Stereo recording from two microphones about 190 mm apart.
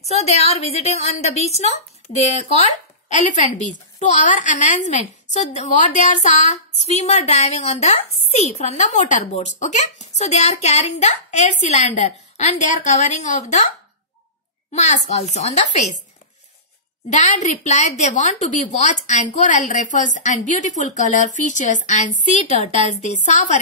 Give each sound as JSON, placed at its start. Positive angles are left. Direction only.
{"t": 0.1, "sound": "a woman's voice", "side_deg": 35}
{"t": 14.7, "sound": "a child's voice", "side_deg": 35}
{"t": 17.1, "sound": "a woman's voice", "side_deg": 40}